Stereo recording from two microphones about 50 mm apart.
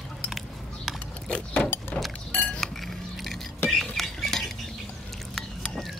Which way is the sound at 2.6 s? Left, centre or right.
Centre.